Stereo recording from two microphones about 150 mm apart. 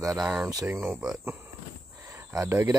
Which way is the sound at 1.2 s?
15° right (ahead or behind).